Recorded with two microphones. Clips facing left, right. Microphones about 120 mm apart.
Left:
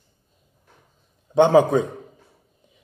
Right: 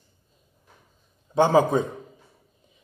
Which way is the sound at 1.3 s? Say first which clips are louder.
Left 4 dB; 20° left (ahead or behind).